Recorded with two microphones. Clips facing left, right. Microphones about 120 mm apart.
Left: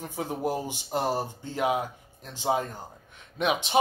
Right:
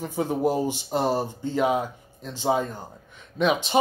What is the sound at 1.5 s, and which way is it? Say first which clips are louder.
Speech: right 3 dB; 10° left (ahead or behind).